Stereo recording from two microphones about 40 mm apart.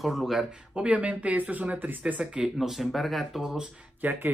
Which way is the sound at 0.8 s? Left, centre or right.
Right.